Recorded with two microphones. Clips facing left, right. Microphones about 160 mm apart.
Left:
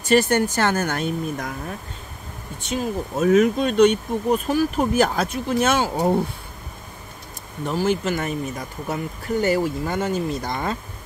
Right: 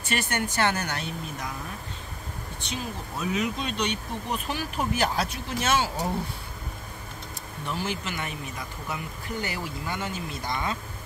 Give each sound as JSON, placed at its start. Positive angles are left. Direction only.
{"t": 0.0, "sound": "speech", "side_deg": 40}
{"t": 2.6, "sound": "speech", "side_deg": 45}
{"t": 7.6, "sound": "speech", "side_deg": 45}